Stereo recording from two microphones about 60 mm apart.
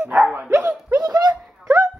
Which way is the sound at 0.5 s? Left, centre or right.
Right.